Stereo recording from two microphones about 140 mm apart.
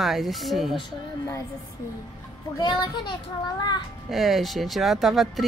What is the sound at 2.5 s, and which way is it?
Speech, 30° left (ahead or behind).